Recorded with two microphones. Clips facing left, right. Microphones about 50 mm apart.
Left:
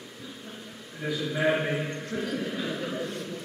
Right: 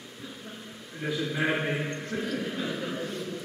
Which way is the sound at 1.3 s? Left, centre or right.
Centre.